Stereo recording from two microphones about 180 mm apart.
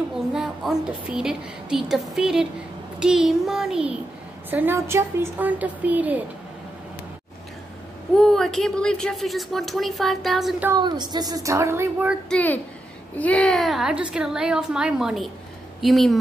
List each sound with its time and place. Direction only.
0.3 s a woman's voice: 5° right (ahead or behind)
8.1 s a woman's voice: centre (ahead or behind)
10.8 s a woman's voice: 25° right (ahead or behind)
12.3 s a child's voice: 10° left (ahead or behind)